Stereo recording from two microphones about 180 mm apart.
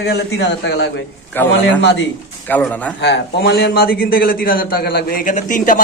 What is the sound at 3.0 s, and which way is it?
A man's voice, 70° left (ahead or behind).